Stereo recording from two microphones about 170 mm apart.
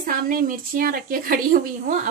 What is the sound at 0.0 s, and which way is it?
A woman's voice, 55° right (ahead or behind).